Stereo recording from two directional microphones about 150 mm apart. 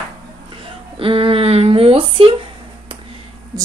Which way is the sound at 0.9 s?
35° right (ahead or behind).